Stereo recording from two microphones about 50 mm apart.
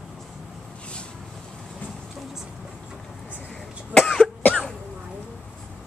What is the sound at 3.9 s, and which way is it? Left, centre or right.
Cough, centre.